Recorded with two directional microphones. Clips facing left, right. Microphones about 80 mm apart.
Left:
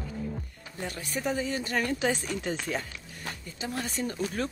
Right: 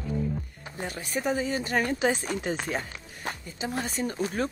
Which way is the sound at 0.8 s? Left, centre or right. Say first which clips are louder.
Right 2 dB; right.